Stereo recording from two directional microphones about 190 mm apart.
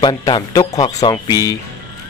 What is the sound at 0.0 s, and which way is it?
Speech, 20° left (ahead or behind).